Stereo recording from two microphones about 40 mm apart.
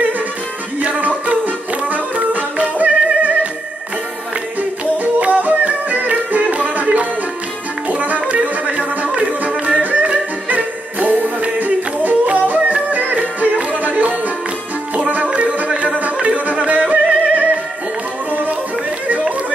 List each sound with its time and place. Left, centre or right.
0.7 s music: right
4.6 s music: right
15.2 s music: right
19.0 s chatter: right